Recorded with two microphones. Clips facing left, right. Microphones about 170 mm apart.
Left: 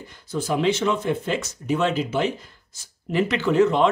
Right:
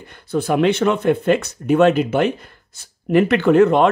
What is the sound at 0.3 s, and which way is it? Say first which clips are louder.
Speech: right 5 dB; 60° right (ahead or behind).